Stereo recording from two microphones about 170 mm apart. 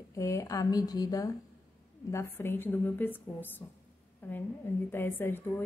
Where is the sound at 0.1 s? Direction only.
20° left (ahead or behind).